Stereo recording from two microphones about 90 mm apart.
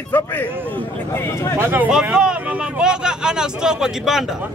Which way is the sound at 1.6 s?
25° right (ahead or behind).